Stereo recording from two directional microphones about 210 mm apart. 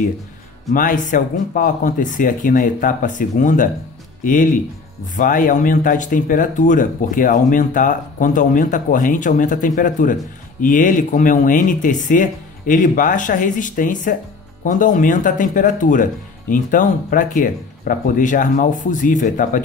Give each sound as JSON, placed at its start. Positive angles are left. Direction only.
{"t": 0.7, "sound": "speech", "side_deg": 40}